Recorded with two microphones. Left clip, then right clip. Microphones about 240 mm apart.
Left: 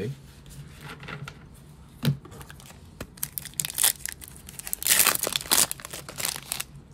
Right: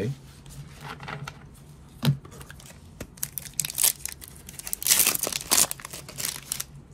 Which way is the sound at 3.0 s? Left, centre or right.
Centre.